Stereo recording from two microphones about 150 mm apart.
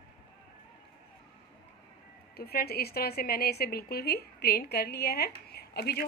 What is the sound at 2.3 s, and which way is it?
A woman's voice, 90° left.